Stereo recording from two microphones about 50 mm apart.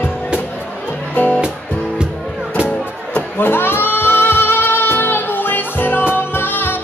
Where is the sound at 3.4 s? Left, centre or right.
Left.